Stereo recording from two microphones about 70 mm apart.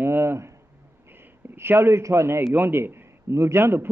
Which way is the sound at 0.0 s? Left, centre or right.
Right.